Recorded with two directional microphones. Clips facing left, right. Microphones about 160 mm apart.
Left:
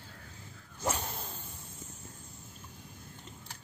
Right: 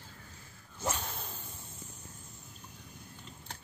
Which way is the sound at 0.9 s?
5° left (ahead or behind).